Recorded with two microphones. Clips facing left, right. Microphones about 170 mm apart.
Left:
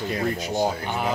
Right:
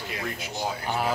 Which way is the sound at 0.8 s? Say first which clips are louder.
Left 1 dB; 5° right (ahead or behind).